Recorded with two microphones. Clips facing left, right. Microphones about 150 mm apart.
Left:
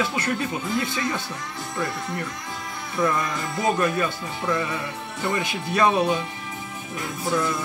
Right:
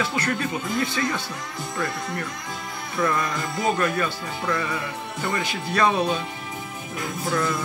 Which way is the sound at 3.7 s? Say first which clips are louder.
Left 1 dB; 15° left (ahead or behind).